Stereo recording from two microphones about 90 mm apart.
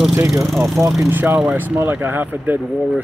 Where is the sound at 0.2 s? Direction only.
35° right (ahead or behind).